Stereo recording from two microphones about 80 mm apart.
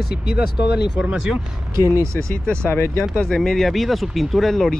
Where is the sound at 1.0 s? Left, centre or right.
Centre.